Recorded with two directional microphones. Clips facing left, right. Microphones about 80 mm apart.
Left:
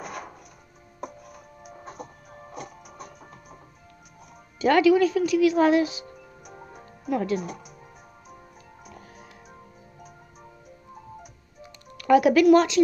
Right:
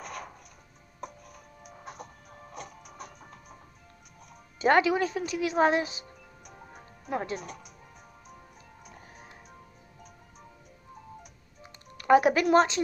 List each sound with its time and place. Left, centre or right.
0.0 s music: centre
4.6 s speech: right
7.1 s speech: right
7.3 s speech: centre
11.6 s music: right